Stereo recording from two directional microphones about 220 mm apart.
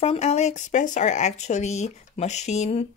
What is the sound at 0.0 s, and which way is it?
Speech, 30° left (ahead or behind).